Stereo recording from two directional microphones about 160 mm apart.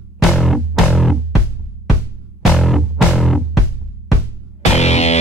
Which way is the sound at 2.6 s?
Centre (ahead or behind).